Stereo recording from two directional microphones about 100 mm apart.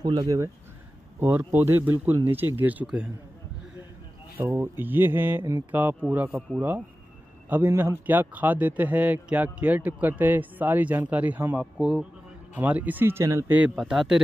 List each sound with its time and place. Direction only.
0.0 s speech: 40° right (ahead or behind)
1.2 s speech: 20° right (ahead or behind)
4.4 s a man's voice: 20° right (ahead or behind)
7.4 s a man's voice: 15° right (ahead or behind)
11.6 s a man's voice: 5° right (ahead or behind); by 13.5 s 30° right (ahead or behind)
13.7 s speech: 5° right (ahead or behind)